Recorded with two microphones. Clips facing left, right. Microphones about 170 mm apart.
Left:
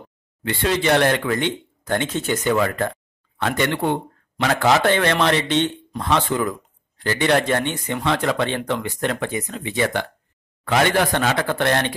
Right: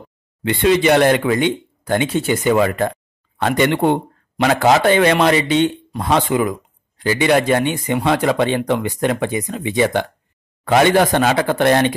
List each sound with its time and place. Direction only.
0.4 s a man's voice: 20° right (ahead or behind)